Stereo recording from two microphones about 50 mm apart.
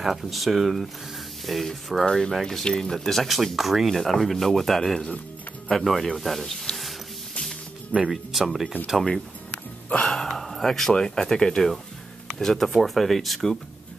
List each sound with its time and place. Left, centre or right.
0.0 s speech: centre
2.0 s speech: centre
3.3 s speech: centre
8.1 s speech: centre
8.7 s speech: left
10.0 s speech: centre